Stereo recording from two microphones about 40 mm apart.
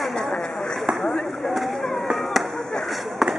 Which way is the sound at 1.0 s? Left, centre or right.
Centre.